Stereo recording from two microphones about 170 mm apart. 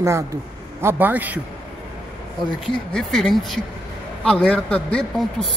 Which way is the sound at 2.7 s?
5° left (ahead or behind).